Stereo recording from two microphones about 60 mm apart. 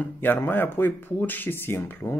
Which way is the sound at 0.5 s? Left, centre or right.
Left.